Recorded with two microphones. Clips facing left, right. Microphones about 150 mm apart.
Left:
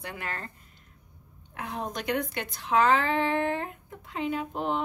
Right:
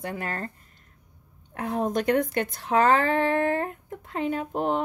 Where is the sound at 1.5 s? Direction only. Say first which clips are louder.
Right 8 dB; 45° right (ahead or behind).